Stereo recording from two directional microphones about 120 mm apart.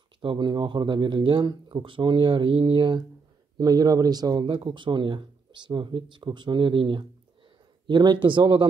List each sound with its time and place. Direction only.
0.2 s speech: 40° right (ahead or behind)